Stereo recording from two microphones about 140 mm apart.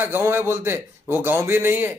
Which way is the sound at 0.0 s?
15° right (ahead or behind).